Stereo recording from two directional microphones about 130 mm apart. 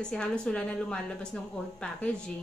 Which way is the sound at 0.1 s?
5° left (ahead or behind).